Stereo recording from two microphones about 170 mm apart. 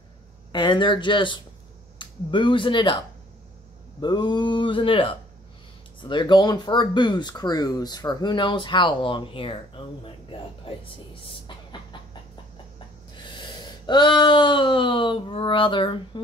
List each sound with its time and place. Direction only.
0.5 s speech: 25° left (ahead or behind)
4.0 s speech: 25° left (ahead or behind)
11.4 s a sound: 25° left (ahead or behind)
13.3 s speech: 25° left (ahead or behind)